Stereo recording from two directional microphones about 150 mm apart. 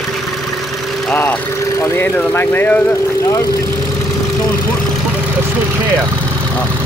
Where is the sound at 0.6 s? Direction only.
Centre (ahead or behind); by 4.7 s 20° left (ahead or behind).